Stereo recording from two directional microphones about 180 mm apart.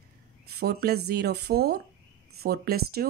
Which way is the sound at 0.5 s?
60° right (ahead or behind).